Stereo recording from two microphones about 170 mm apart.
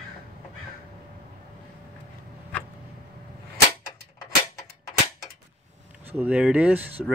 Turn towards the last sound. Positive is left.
turn(degrees=-10)  # may be behind; listen again after turning